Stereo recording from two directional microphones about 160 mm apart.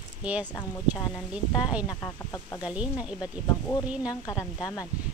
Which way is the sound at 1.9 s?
20° left (ahead or behind).